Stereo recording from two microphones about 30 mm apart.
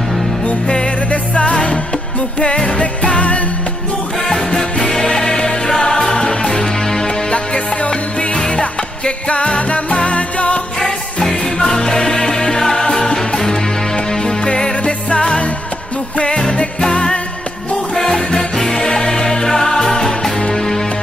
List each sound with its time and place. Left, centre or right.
1.1 s music: left
4.3 s music: centre
7.3 s music: left
11.2 s music: centre
13.9 s music: left
14.8 s music: left
16.9 s music: left
17.9 s music: centre